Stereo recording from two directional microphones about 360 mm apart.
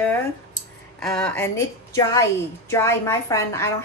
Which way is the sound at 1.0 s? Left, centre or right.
Centre.